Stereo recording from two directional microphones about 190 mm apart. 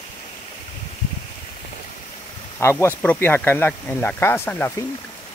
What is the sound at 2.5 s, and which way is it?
Speech, 10° left (ahead or behind).